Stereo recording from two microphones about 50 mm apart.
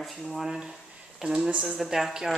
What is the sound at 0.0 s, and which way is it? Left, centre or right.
Speech, centre.